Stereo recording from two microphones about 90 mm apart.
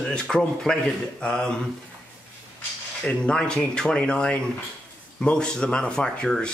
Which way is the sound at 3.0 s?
10° left (ahead or behind).